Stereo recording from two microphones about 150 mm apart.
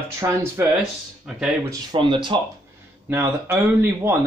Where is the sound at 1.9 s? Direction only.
35° right (ahead or behind).